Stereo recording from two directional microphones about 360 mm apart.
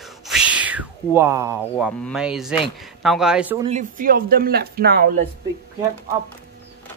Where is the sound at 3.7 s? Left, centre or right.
Right.